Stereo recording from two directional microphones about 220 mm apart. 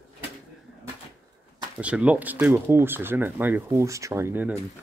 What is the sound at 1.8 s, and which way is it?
Speech, 5° right (ahead or behind).